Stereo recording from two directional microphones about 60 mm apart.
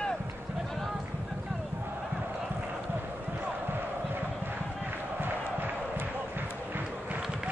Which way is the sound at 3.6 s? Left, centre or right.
Right.